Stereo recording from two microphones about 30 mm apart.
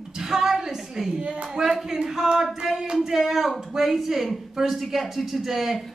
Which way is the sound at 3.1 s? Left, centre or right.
Centre.